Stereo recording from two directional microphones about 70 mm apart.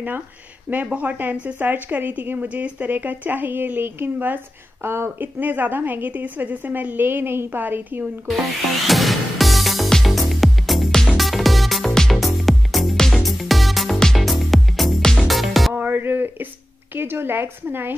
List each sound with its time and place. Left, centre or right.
0.9 s a woman's voice: right
8.3 s music: centre
15.7 s music: right
16.9 s a woman's voice: right